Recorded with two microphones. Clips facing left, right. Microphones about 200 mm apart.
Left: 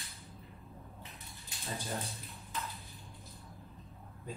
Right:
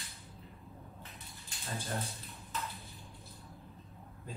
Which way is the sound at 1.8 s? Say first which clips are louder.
Right 1 dB; centre (ahead or behind).